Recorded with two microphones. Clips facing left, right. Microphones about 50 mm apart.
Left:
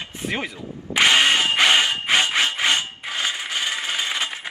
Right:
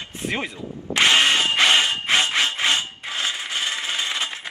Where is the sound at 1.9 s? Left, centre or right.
Left.